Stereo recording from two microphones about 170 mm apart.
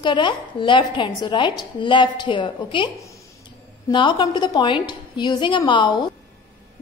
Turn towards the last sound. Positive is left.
turn(degrees=25)  # may be behind; listen again after turning